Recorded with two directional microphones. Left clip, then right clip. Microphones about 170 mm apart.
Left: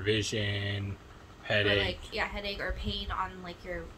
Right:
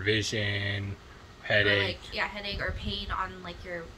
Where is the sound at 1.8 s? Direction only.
25° left (ahead or behind).